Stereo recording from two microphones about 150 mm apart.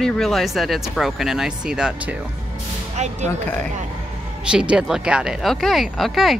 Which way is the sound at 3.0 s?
50° right (ahead or behind).